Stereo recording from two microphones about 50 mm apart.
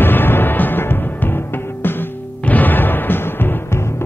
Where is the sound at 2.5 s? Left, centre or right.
Left.